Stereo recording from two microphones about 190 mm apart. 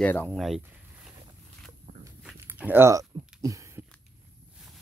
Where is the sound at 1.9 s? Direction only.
45° right (ahead or behind).